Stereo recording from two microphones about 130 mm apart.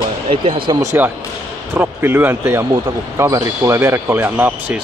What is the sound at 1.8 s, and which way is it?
Speech, 15° right (ahead or behind).